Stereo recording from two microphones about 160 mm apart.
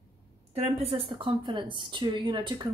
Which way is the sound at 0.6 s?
40° right (ahead or behind).